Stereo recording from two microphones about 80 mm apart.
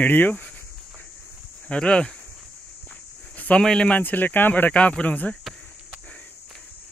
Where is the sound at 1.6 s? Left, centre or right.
Centre.